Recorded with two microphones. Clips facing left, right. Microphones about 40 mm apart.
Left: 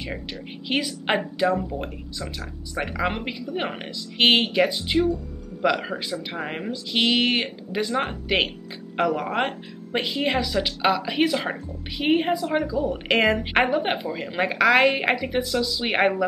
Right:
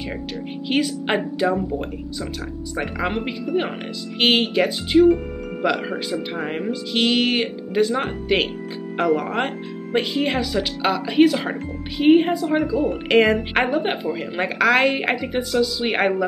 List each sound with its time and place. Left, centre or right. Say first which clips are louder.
0.7 s a woman's voice: right 3 dB; centre
3.0 s a woman's voice: right 2 dB; centre
8.9 s speech: right 3 dB; centre
9.9 s a woman's voice: right 3 dB; centre
12.5 s speech: right 3 dB; right
13.1 s a woman's voice: right 3 dB; centre